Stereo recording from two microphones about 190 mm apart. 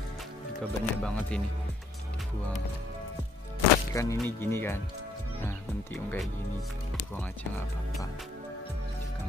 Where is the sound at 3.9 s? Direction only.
15° left (ahead or behind).